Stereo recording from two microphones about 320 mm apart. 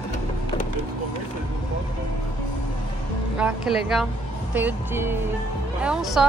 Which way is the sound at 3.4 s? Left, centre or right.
Centre.